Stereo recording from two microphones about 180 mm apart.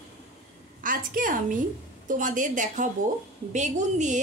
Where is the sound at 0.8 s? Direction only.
50° right (ahead or behind).